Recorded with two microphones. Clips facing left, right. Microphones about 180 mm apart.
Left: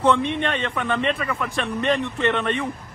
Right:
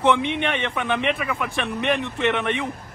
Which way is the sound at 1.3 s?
Centre (ahead or behind).